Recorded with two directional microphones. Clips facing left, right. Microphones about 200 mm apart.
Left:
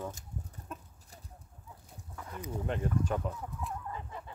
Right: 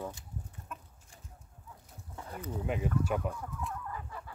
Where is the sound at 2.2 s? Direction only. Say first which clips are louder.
Right 1 dB; 25° right (ahead or behind).